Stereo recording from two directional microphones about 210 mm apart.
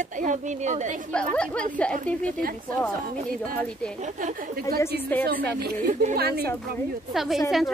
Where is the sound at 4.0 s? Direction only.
35° right (ahead or behind).